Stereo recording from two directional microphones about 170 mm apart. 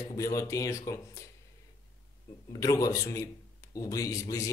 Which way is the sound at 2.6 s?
20° left (ahead or behind).